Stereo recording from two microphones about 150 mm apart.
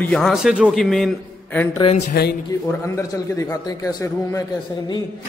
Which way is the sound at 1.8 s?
35° left (ahead or behind).